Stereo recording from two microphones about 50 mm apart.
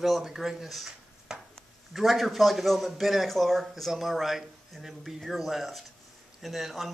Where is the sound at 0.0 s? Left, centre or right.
Centre.